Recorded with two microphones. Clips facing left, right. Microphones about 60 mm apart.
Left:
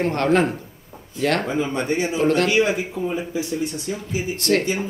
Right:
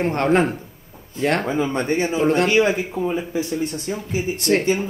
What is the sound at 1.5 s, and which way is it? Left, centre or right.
Speech, right.